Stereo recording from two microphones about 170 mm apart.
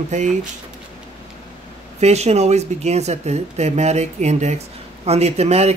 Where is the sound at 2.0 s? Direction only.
40° right (ahead or behind).